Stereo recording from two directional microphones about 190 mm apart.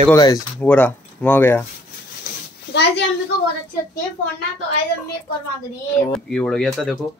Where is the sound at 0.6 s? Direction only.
10° left (ahead or behind).